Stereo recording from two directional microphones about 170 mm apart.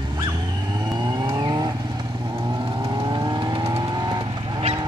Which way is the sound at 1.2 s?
25° right (ahead or behind).